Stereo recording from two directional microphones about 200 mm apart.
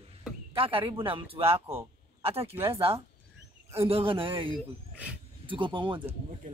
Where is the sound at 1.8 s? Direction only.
30° right (ahead or behind).